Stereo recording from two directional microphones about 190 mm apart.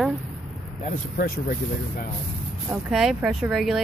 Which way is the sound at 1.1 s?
50° left (ahead or behind).